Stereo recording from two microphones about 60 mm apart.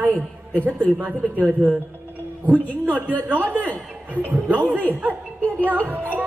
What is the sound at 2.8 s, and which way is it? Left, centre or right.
A man's voice, right.